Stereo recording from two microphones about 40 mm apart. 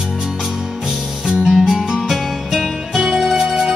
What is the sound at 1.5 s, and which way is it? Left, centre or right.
Music, centre.